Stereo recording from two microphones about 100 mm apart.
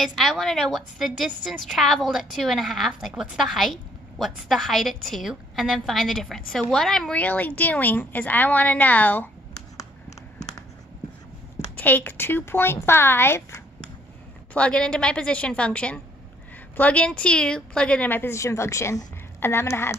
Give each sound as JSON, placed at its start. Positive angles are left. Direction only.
{"t": 0.0, "sound": "a woman's voice", "side_deg": 0}
{"t": 7.2, "sound": "a woman's voice", "side_deg": 15}
{"t": 11.7, "sound": "a woman's voice", "side_deg": 15}
{"t": 14.5, "sound": "a woman's voice", "side_deg": 10}